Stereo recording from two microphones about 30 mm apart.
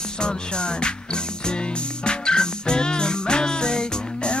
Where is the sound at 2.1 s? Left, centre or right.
Left.